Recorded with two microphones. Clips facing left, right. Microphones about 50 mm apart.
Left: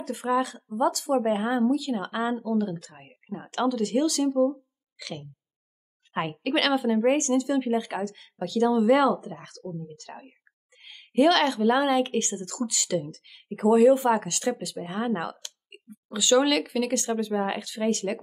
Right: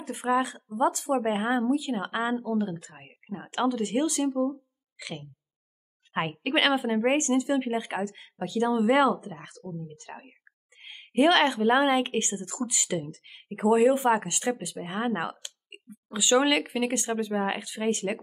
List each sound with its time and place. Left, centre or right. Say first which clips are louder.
0.0 s speech: even; right
4.3 s speech: left 4 dB; centre
4.9 s speech: left 1 dB; right